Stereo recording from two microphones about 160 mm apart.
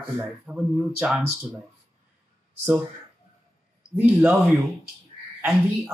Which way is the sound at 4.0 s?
10° right (ahead or behind).